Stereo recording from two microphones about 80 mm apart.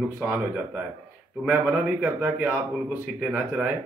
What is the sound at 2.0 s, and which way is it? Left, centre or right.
Speech, centre.